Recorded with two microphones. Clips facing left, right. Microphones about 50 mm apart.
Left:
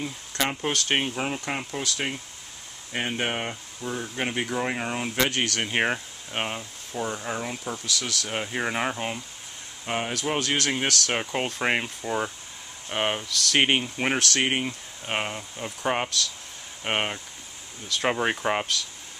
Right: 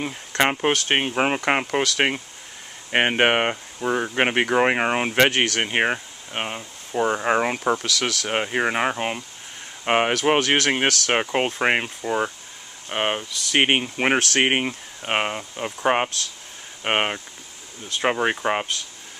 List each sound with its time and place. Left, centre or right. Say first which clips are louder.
0.0 s speech: right 7 dB; right
1.1 s speech: right 9 dB; right
5.7 s speech: right 3 dB; centre
7.0 s speech: right 10 dB; right
9.8 s speech: right 9 dB; right
18.0 s speech: right 3 dB; centre